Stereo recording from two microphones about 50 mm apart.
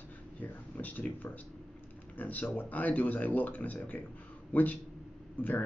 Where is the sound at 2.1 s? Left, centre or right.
Left.